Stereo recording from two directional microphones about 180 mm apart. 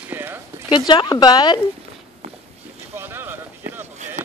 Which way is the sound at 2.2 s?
35° right (ahead or behind).